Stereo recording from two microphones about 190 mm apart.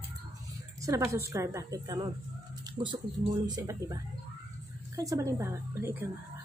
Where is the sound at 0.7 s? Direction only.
15° right (ahead or behind).